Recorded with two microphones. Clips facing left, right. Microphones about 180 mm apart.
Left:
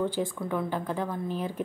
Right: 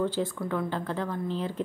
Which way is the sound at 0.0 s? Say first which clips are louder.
Right 1 dB; 15° left (ahead or behind).